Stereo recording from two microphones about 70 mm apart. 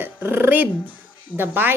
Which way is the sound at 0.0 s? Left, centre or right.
Right.